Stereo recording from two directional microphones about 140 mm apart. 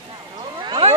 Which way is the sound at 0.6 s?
35° right (ahead or behind).